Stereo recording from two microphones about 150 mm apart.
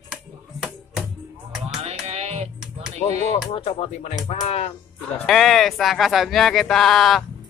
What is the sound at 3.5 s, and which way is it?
Speech, 40° left (ahead or behind).